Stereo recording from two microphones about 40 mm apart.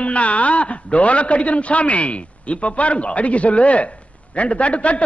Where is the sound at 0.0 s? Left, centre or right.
Left.